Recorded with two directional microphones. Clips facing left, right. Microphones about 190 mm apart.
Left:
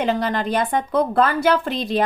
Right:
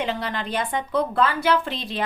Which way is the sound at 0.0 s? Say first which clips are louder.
Left 6 dB; 45° left (ahead or behind).